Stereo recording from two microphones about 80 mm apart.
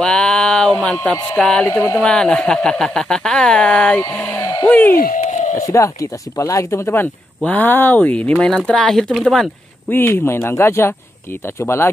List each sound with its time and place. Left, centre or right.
0.0 s a sound: centre
1.0 s speech: centre
1.7 s speech: left
2.0 s speech: centre
4.6 s speech: left
5.6 s speech: left; by 9.5 s centre
9.8 s speech: left